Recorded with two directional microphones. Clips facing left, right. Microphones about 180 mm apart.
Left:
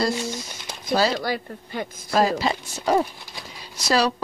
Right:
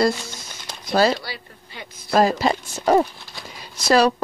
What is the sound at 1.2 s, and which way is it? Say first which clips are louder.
Speech: left 9 dB; 45° left (ahead or behind).